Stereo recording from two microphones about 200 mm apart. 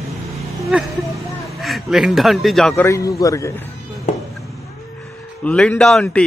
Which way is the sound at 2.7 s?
15° left (ahead or behind).